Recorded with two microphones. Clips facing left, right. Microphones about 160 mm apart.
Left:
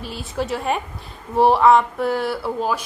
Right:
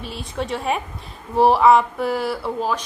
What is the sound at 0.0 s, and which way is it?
A woman's voice, centre (ahead or behind).